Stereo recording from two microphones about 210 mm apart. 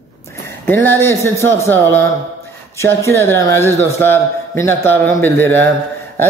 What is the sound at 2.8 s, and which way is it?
A man's voice, 15° left (ahead or behind).